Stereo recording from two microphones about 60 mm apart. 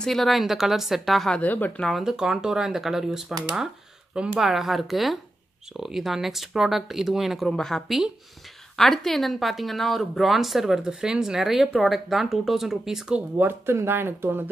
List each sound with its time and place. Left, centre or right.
0.0 s speech: centre
1.3 s speech: left
1.9 s a woman's voice: centre
13.4 s speech: right